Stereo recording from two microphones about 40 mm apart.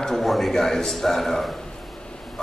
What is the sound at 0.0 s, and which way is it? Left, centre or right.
A man's voice, centre.